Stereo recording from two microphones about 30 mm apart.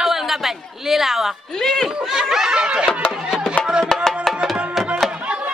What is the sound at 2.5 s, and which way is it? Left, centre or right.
Music, right.